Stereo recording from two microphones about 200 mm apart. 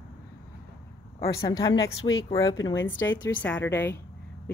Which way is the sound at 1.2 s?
15° left (ahead or behind).